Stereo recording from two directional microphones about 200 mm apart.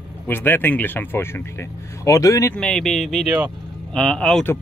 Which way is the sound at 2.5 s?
Centre (ahead or behind).